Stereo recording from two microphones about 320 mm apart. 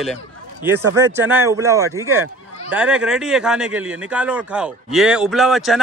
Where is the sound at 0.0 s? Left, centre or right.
Centre.